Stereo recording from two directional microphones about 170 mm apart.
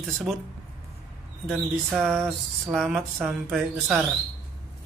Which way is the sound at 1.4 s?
Centre (ahead or behind).